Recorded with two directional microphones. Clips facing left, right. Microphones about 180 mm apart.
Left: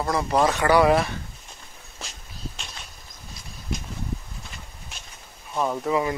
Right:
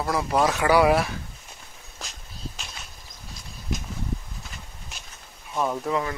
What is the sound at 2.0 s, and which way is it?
Walk, centre (ahead or behind).